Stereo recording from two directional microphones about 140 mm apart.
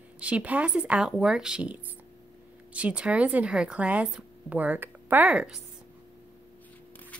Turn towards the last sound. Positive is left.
turn(degrees=-10)  # may be behind; listen again after turning